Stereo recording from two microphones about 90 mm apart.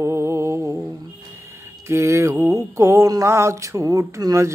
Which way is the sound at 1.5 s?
30° right (ahead or behind).